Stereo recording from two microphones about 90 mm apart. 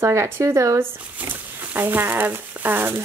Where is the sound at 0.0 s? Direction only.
35° right (ahead or behind).